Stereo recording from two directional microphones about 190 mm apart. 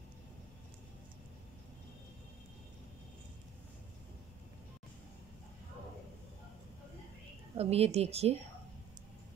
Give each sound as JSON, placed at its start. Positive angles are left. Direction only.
{"t": 7.5, "sound": "a woman's voice", "side_deg": -35}